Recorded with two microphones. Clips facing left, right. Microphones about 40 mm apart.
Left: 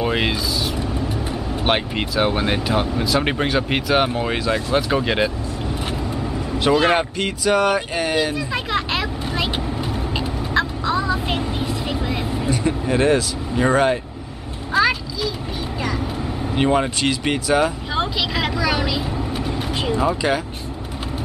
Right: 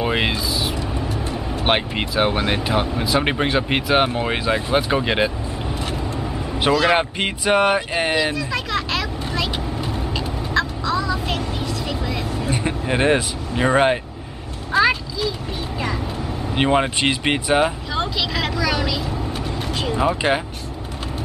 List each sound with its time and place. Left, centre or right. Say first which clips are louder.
0.0 s speech: even; centre
6.7 s speech: left 1 dB; centre
7.0 s speech: even; right
8.4 s vehicle: left 1 dB; centre
12.4 s vehicle: left 2 dB; right
14.7 s a sound: right 1 dB; centre
16.5 s speech: right 1 dB; right
17.9 s vehicle: left 1 dB; centre
20.2 s speech: right 1 dB; right